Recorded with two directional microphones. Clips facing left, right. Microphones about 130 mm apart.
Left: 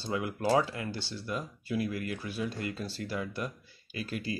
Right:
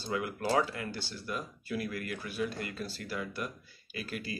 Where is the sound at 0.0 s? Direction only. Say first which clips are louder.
Left 2 dB; 25° left (ahead or behind).